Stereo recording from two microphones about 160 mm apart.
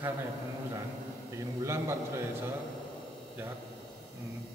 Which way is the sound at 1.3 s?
15° right (ahead or behind).